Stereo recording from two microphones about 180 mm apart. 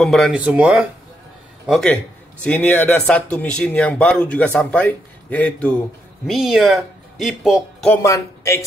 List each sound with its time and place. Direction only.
0.0 s speech: centre (ahead or behind)
7.9 s speech: 15° left (ahead or behind)